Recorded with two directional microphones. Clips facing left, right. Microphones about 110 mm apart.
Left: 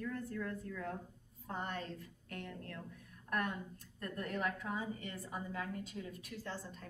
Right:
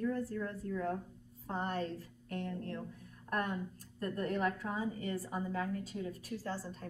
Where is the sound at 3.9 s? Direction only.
35° right (ahead or behind).